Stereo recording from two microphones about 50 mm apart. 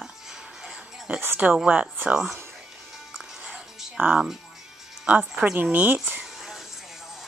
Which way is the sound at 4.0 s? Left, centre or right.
Right.